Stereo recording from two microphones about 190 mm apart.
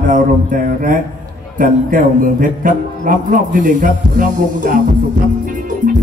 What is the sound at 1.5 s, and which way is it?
A man's voice, 45° right (ahead or behind).